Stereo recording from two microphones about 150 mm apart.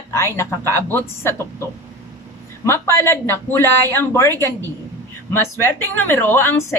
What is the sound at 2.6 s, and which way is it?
A woman's voice, 20° left (ahead or behind).